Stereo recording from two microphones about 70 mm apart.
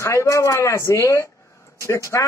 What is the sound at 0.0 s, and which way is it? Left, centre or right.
Speech, left.